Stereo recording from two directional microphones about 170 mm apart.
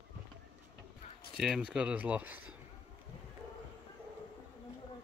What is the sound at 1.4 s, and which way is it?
Speech, 5° right (ahead or behind).